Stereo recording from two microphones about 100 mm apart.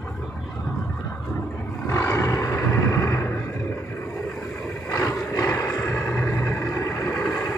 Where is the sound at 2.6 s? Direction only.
25° left (ahead or behind).